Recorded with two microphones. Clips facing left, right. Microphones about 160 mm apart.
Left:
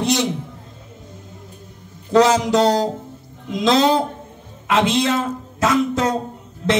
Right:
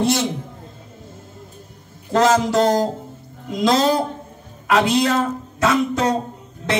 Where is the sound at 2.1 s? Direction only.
50° right (ahead or behind).